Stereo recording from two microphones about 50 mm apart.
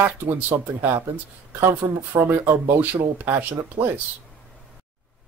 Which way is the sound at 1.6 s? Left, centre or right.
Right.